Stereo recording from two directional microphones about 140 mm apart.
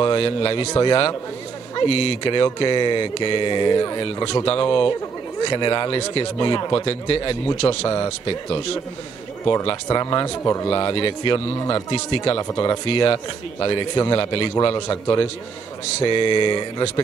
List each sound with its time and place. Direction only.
0.0 s speech: 35° left (ahead or behind)
9.8 s speech: 25° left (ahead or behind)
10.7 s speech: 35° left (ahead or behind)
12.4 s speech: 25° left (ahead or behind)
12.8 s speech: 40° left (ahead or behind)
14.9 s speech: 25° left (ahead or behind)
16.0 s speech: 35° left (ahead or behind)